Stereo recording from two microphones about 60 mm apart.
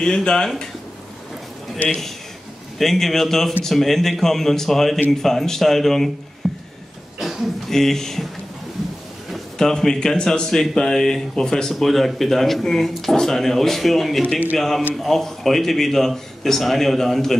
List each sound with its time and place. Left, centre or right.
0.0 s speech: centre
2.8 s speech: centre
6.4 s a sound: centre
7.2 s speech: centre
9.3 s speech: centre
14.2 s speech: left
15.0 s speech: centre